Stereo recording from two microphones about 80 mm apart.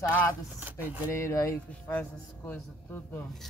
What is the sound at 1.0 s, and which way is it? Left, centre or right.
Speech, left.